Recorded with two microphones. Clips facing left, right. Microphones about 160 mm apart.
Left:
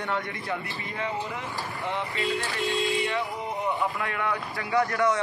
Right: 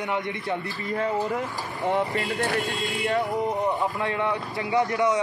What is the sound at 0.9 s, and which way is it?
Speech, 45° right (ahead or behind).